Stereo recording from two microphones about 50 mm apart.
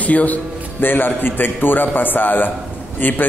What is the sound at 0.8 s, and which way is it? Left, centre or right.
A man's voice, left.